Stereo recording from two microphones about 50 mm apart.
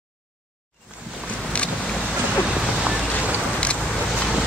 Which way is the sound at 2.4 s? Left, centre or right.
Centre.